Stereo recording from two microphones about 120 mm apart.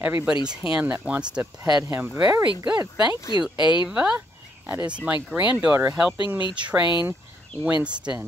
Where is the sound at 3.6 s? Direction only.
40° left (ahead or behind).